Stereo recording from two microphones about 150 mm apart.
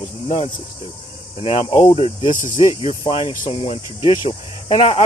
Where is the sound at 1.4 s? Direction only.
40° left (ahead or behind).